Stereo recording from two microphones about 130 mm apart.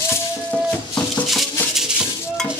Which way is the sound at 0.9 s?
5° left (ahead or behind).